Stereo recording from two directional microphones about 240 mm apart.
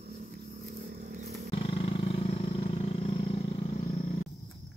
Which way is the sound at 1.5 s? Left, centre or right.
Left.